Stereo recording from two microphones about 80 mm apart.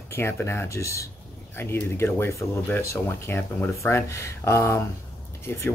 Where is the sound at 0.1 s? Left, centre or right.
Left.